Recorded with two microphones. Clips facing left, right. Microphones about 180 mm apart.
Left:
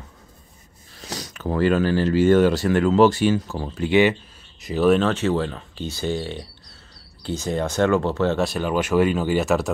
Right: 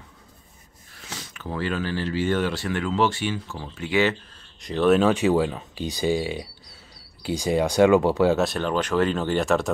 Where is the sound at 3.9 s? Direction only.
20° left (ahead or behind).